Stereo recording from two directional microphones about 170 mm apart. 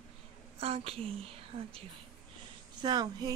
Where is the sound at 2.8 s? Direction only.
25° right (ahead or behind).